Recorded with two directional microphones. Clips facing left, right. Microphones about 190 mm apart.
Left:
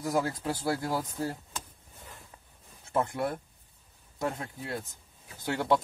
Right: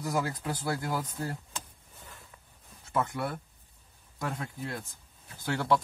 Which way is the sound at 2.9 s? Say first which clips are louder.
Left 2 dB; 25° left (ahead or behind).